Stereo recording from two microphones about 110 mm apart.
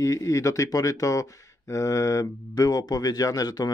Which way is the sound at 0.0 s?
30° left (ahead or behind).